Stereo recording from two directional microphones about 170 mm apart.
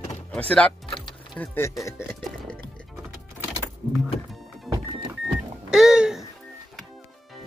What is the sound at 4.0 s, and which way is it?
Vehicle, centre (ahead or behind).